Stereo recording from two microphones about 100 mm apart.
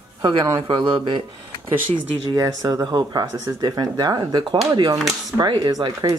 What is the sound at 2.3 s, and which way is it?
Speech, 30° right (ahead or behind).